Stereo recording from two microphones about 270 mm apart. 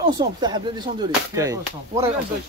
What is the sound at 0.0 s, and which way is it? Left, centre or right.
Speech, centre.